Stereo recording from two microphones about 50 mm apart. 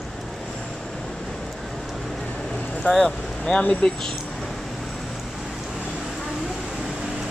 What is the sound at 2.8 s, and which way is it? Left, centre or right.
Speech, centre.